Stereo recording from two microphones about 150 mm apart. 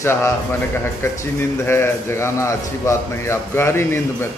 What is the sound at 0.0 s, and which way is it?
A man's voice, 20° left (ahead or behind).